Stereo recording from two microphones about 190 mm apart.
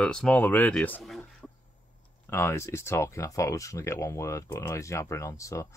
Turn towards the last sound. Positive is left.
turn(degrees=15)  # may be behind; listen again after turning